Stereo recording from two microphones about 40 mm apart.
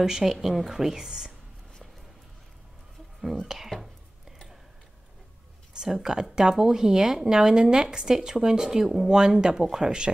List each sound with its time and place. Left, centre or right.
0.0 s speech: centre
3.3 s speech: centre
5.7 s speech: centre